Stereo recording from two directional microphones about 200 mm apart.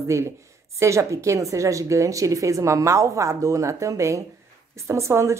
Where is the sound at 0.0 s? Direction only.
15° right (ahead or behind).